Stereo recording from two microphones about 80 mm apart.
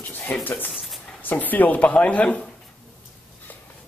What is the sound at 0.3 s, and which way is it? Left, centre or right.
Speech, left.